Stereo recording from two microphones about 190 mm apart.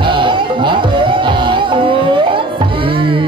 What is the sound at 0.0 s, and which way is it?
Music, 25° right (ahead or behind).